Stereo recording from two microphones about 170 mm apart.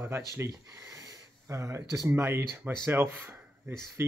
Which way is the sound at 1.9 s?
15° right (ahead or behind).